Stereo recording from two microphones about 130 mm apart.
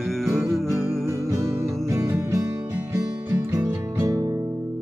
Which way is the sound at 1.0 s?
20° right (ahead or behind).